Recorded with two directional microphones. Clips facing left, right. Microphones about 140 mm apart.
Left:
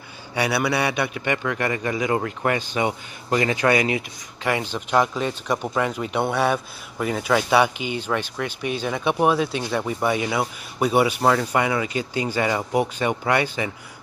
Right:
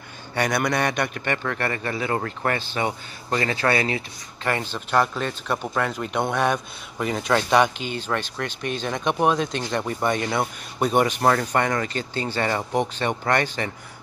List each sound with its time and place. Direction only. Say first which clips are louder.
0.3 s speech: left 1 dB; 10° left (ahead or behind)